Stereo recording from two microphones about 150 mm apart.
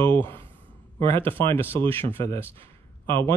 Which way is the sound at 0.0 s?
15° left (ahead or behind).